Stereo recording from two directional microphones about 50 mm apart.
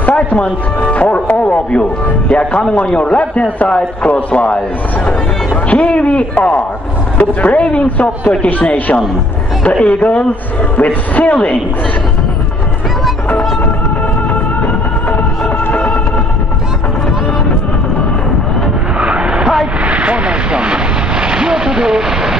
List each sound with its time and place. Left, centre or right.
0.1 s speech: left
0.8 s music: left
1.4 s a man's voice: left
5.7 s a man's voice: left
15.7 s music: left
18.9 s vehicle: centre